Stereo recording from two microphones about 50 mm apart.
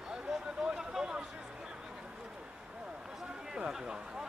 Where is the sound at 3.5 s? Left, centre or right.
Centre.